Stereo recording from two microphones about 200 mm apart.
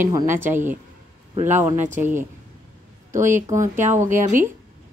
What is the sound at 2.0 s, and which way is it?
Speech, 10° right (ahead or behind).